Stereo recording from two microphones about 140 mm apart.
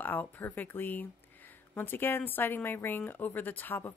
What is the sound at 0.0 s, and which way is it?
A woman's voice, 15° left (ahead or behind).